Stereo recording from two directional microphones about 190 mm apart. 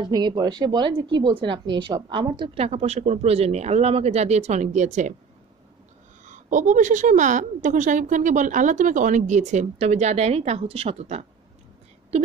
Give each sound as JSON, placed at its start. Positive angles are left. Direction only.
{"t": 0.0, "sound": "a woman's voice", "side_deg": -20}
{"t": 6.2, "sound": "a woman's voice", "side_deg": -40}